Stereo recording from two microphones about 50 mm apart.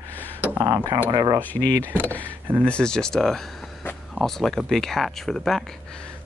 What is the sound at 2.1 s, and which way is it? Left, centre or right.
Speech, right.